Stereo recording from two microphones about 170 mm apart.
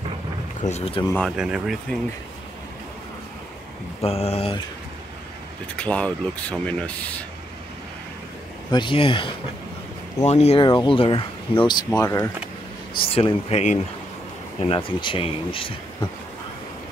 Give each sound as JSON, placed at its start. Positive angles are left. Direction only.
{"t": 0.6, "sound": "speech", "side_deg": 40}
{"t": 1.3, "sound": "speech", "side_deg": -5}
{"t": 4.0, "sound": "speech", "side_deg": 35}
{"t": 5.8, "sound": "speech", "side_deg": 5}
{"t": 8.7, "sound": "speech", "side_deg": 30}
{"t": 12.0, "sound": "speech", "side_deg": 15}
{"t": 13.0, "sound": "speech", "side_deg": 35}